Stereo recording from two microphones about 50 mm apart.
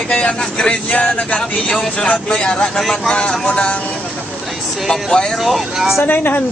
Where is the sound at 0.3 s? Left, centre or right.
Centre.